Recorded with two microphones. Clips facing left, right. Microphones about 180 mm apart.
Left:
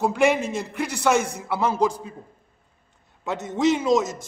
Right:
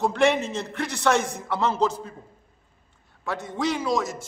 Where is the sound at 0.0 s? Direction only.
10° left (ahead or behind).